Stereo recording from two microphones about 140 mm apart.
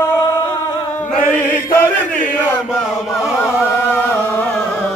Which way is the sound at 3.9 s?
15° left (ahead or behind).